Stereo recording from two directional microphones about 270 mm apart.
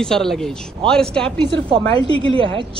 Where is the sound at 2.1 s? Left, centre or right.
Centre.